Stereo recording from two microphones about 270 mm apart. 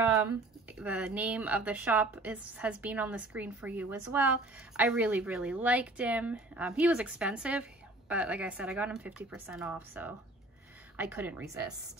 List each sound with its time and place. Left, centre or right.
0.7 s a woman's voice: centre